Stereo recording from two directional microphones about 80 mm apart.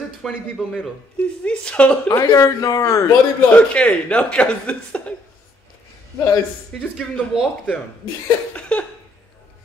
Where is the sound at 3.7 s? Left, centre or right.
Centre.